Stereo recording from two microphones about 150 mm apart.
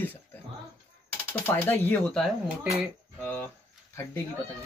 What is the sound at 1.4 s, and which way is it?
Speech, 15° left (ahead or behind).